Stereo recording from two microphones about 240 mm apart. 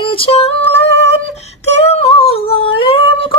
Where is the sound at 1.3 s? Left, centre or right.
Left.